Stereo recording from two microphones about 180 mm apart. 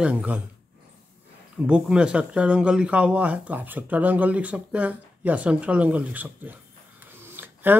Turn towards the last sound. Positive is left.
turn(degrees=-10)  # may be behind; listen again after turning